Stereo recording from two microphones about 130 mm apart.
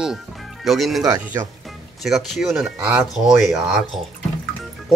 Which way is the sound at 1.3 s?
20° right (ahead or behind).